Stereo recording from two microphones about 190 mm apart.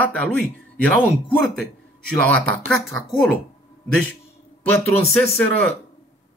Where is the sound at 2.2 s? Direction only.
5° left (ahead or behind).